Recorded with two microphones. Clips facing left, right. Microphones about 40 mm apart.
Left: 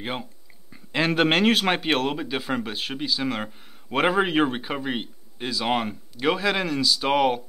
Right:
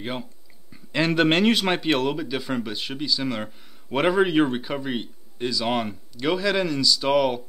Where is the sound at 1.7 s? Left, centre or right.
Centre.